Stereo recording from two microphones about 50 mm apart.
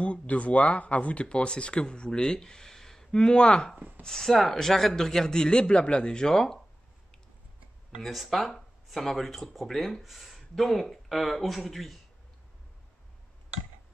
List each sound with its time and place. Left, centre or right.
0.0 s speech: left; by 6.6 s centre
8.0 s speech: centre